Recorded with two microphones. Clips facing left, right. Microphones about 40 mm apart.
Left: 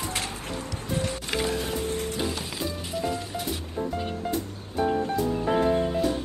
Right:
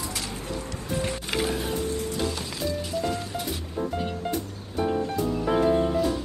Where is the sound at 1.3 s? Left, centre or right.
Centre.